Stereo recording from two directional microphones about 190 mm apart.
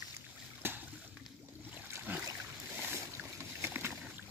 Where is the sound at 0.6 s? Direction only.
10° right (ahead or behind).